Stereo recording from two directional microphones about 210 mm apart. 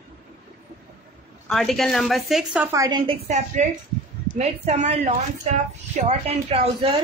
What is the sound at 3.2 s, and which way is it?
A woman's voice, 35° right (ahead or behind).